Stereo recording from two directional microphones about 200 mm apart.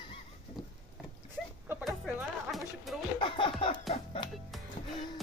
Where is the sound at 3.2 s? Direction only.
25° left (ahead or behind).